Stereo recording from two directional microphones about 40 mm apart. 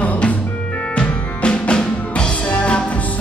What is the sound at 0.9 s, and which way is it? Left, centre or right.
Music, left.